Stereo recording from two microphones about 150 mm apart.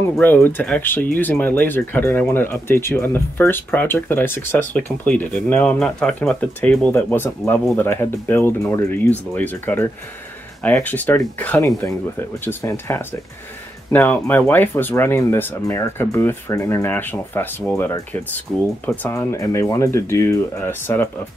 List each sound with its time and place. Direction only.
0.0 s speech: 15° left (ahead or behind)